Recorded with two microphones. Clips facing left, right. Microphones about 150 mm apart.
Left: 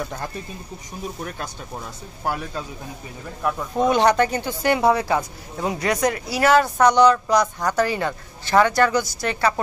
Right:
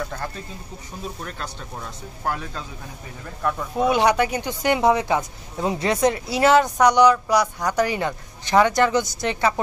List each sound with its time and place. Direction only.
2.2 s speech: 10° left (ahead or behind)
3.7 s speech: 10° right (ahead or behind)